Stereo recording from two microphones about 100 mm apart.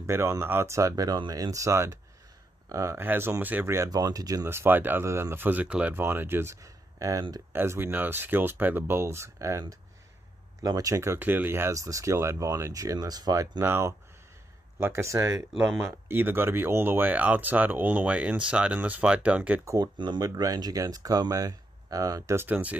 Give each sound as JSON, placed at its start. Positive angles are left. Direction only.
{"t": 0.0, "sound": "speech", "side_deg": -25}
{"t": 3.9, "sound": "speech", "side_deg": -40}
{"t": 4.5, "sound": "speech", "side_deg": -20}
{"t": 7.5, "sound": "speech", "side_deg": -25}
{"t": 13.6, "sound": "speech", "side_deg": -25}
{"t": 15.5, "sound": "speech", "side_deg": -5}
{"t": 16.1, "sound": "speech", "side_deg": -20}
{"t": 19.6, "sound": "speech", "side_deg": -30}
{"t": 20.0, "sound": "speech", "side_deg": -45}